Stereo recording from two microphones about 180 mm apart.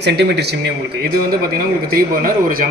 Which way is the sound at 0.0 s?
70° right (ahead or behind).